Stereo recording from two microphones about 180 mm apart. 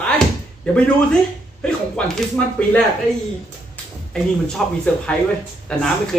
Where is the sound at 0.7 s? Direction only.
5° left (ahead or behind).